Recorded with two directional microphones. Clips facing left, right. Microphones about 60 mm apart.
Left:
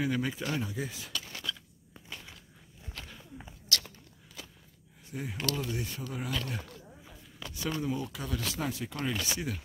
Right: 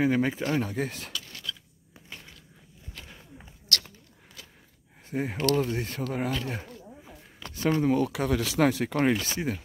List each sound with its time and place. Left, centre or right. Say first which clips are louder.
0.0 s speech: right 7 dB; right
0.6 s speech: right 6 dB; right
1.3 s a sound: even; centre
3.7 s a sound: right 3 dB; right
4.4 s walk: left 2 dB; centre
5.1 s speech: right 9 dB; right
5.9 s speech: right 8 dB; right
6.4 s speech: right 4 dB; right
7.4 s a sound: right 9 dB; right
7.9 s speech: right 10 dB; right
9.2 s speech: right 4 dB; right